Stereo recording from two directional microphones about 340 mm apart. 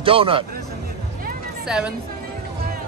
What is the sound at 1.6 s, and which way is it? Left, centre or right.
Speech, centre.